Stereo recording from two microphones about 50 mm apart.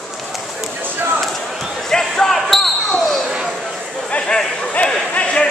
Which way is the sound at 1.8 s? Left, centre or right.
Centre.